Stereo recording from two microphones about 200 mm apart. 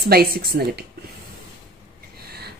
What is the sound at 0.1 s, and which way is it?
Speech, 50° right (ahead or behind).